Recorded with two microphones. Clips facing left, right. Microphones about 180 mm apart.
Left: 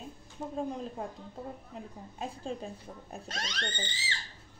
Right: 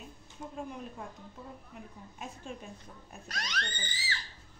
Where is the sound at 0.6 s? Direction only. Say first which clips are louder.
Left 6 dB; 30° left (ahead or behind).